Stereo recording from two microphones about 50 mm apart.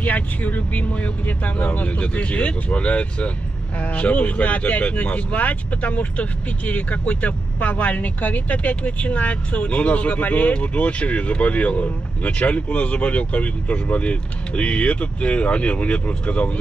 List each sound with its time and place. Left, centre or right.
0.0 s speech: left